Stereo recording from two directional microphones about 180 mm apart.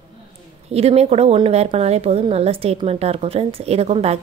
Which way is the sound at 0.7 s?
35° right (ahead or behind).